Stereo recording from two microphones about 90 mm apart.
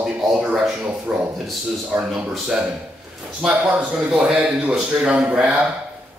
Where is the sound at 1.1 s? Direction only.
5° right (ahead or behind).